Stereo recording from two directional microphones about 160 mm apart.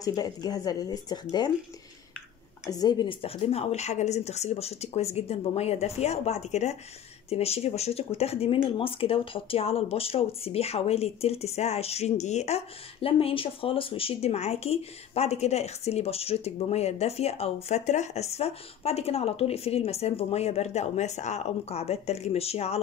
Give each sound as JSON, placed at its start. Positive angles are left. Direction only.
{"t": 0.0, "sound": "speech", "side_deg": 25}
{"t": 2.6, "sound": "speech", "side_deg": 25}